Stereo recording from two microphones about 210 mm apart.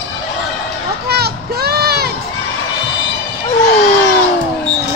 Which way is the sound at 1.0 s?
50° right (ahead or behind).